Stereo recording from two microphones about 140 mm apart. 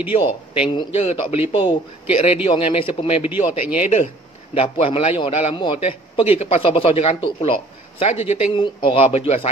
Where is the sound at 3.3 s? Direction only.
10° right (ahead or behind).